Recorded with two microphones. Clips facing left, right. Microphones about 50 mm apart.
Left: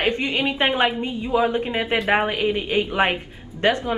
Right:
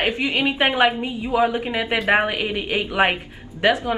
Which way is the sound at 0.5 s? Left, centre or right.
Right.